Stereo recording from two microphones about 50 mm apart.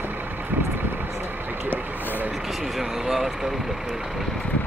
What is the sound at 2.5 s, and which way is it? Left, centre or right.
Vehicle, centre.